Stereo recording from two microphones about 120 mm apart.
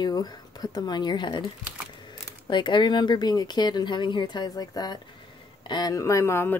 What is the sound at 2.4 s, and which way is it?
Speech, 40° left (ahead or behind).